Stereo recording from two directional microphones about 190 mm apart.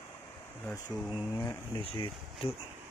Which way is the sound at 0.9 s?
Centre (ahead or behind).